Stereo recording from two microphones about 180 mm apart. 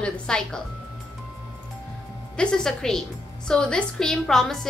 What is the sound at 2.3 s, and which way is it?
A woman's voice, 5° left (ahead or behind).